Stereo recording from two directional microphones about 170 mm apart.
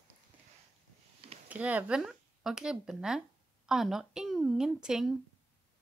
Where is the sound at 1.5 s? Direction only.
10° right (ahead or behind).